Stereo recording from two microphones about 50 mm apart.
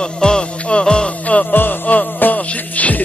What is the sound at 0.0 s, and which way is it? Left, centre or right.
Music, centre.